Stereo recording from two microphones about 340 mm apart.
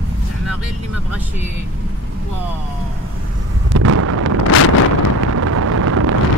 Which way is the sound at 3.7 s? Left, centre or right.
Right.